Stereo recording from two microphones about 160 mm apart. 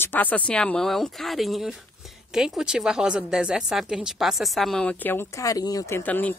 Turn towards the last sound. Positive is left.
turn(degrees=10)  # may be behind; listen again after turning